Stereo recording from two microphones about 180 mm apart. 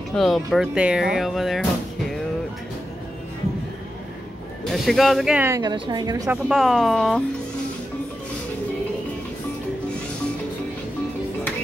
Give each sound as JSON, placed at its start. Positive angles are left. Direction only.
{"t": 0.1, "sound": "speech", "side_deg": 0}
{"t": 4.6, "sound": "speech", "side_deg": 0}
{"t": 5.6, "sound": "a woman's voice", "side_deg": -25}
{"t": 6.5, "sound": "speech", "side_deg": 0}